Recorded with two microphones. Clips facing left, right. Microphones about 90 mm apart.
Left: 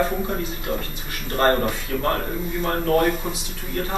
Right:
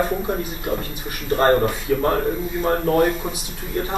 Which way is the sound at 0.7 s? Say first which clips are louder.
Right 3 dB; 20° right (ahead or behind).